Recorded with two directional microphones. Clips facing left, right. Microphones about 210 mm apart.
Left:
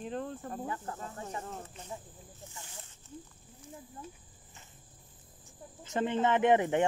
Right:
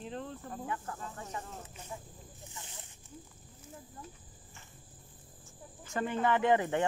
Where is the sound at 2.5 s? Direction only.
20° right (ahead or behind).